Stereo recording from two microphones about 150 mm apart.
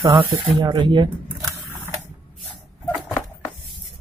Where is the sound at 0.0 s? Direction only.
35° right (ahead or behind).